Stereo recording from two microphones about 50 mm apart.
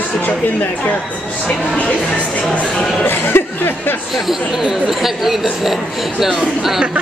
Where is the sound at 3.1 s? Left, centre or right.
Left.